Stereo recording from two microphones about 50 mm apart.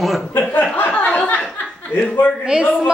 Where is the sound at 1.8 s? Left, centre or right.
Left.